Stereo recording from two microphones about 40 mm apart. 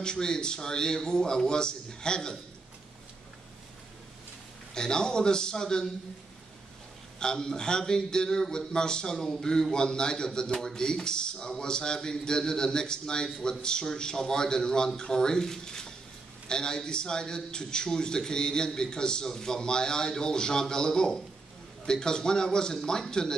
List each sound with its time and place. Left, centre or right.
0.0 s a man's voice: centre
4.7 s a man's voice: centre
7.2 s a man's voice: centre